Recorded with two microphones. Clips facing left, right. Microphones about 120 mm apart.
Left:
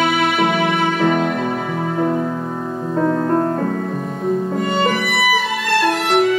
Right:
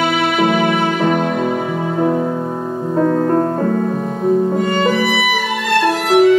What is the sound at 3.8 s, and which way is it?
Music, 45° right (ahead or behind).